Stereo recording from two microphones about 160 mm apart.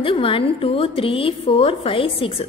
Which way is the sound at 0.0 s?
35° left (ahead or behind).